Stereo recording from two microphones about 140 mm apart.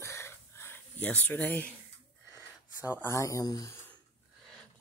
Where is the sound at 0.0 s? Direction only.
20° left (ahead or behind).